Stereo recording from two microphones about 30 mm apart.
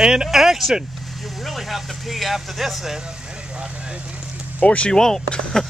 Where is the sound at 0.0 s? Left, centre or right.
Right.